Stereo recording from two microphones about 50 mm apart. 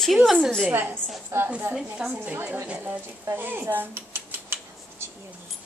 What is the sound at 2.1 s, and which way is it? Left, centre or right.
A woman's voice, right.